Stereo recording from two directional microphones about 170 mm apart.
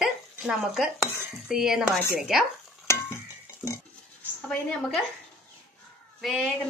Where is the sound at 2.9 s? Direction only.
15° left (ahead or behind).